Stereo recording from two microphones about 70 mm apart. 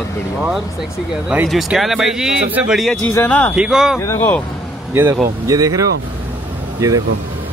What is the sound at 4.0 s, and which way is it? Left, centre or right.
Speech, left.